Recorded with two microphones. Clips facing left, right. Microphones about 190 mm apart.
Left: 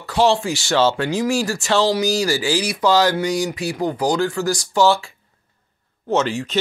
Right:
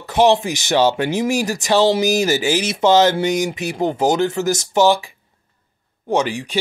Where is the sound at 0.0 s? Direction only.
20° right (ahead or behind).